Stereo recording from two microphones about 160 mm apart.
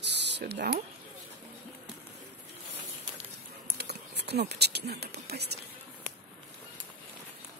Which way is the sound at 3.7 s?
90° right.